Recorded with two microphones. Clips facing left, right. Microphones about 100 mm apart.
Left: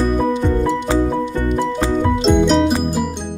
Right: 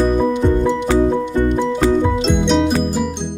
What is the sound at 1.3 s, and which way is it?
Music, 20° right (ahead or behind).